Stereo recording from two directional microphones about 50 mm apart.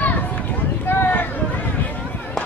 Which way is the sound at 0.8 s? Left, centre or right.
Left.